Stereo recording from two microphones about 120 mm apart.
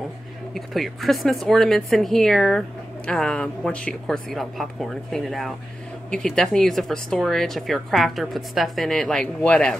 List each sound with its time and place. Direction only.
0.6 s a woman's voice: centre (ahead or behind)